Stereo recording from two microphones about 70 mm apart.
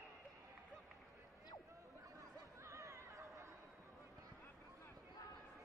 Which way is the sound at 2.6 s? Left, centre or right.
Right.